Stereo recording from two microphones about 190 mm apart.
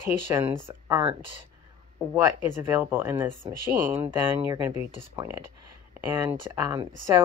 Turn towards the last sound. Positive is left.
turn(degrees=-15)  # may be behind; listen again after turning